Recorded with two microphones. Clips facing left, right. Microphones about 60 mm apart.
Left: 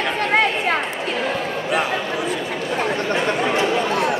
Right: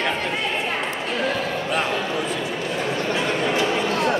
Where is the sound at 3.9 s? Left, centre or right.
Centre.